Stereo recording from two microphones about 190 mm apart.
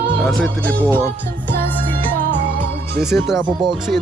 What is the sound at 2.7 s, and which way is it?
Music, 55° right (ahead or behind).